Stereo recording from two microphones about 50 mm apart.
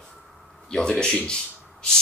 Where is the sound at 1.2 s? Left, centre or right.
Centre.